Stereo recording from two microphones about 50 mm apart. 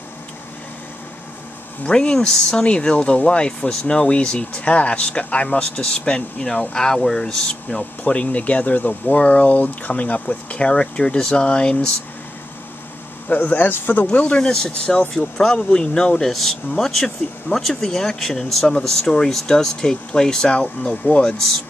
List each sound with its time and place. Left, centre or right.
1.9 s speech: centre
2.5 s speech: centre
13.3 s speech: left
14.1 s speech: left
15.1 s speech: centre
21.3 s speech: centre